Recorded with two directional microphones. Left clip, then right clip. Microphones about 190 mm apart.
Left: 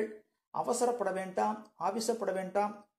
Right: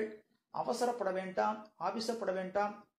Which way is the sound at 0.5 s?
40° left (ahead or behind).